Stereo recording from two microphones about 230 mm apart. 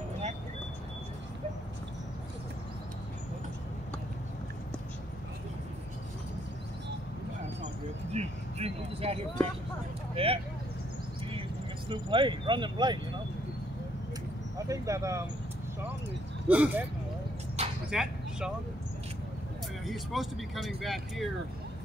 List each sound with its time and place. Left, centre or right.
8.1 s vehicle: right
10.1 s speech: right
11.9 s speech: right
14.7 s speech: centre
16.4 s speech: centre
17.8 s speech: centre
19.9 s speech: centre